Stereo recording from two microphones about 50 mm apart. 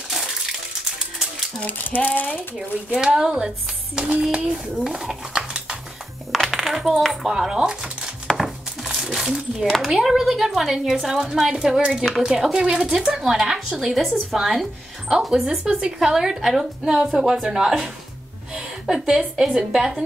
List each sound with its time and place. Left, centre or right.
0.1 s bathtub: centre
1.6 s speech: left
3.0 s a woman's voice: centre
6.3 s coin: centre
7.1 s a woman's voice: centre